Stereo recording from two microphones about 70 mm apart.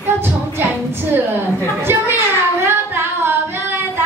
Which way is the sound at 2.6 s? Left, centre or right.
Right.